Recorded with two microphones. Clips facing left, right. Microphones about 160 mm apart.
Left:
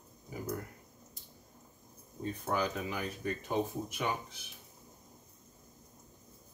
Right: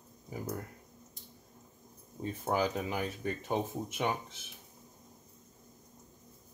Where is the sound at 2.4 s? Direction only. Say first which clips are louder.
Right 3 dB; 25° right (ahead or behind).